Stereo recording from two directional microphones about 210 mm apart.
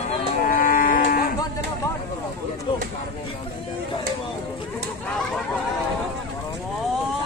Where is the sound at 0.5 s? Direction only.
40° left (ahead or behind).